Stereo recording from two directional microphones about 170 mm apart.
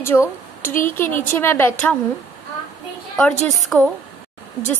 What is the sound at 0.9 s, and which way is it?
A woman's voice, 15° left (ahead or behind).